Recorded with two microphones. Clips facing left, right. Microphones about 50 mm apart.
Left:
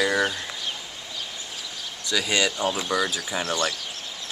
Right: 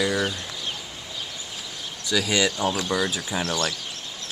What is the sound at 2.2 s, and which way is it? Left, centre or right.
Speech, centre.